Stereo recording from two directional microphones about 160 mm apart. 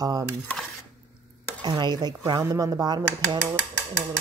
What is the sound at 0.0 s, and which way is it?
Speech, 25° right (ahead or behind).